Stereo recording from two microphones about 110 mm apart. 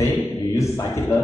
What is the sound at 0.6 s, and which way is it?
Mantra, 25° left (ahead or behind).